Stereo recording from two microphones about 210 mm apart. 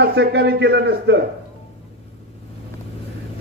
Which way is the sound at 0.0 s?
55° right (ahead or behind).